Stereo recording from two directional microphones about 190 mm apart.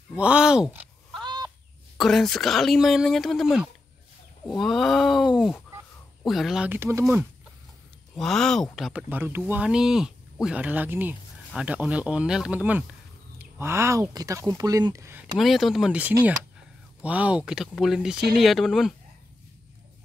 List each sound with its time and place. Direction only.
0.1 s speech: 5° right (ahead or behind)
1.2 s goose: 20° right (ahead or behind)
2.0 s speech: centre (ahead or behind)
8.2 s speech: centre (ahead or behind); by 15.3 s 15° right (ahead or behind)
15.3 s speech: centre (ahead or behind)